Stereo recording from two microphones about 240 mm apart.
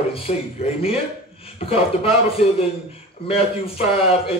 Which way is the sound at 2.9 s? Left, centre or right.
Left.